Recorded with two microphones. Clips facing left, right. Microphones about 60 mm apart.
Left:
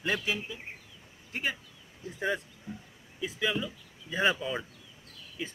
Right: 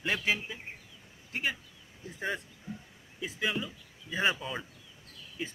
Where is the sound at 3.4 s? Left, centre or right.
Centre.